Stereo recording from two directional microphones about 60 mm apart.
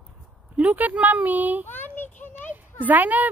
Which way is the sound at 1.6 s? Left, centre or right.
Left.